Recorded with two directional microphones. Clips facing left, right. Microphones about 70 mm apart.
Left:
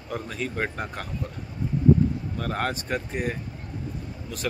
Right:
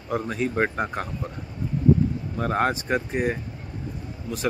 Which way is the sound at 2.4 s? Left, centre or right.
Centre.